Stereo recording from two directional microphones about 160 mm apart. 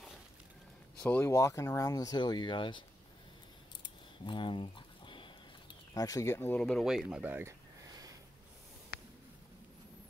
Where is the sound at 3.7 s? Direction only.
30° left (ahead or behind).